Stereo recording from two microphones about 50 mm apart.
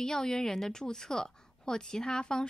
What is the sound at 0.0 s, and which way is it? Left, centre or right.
A woman's voice, centre.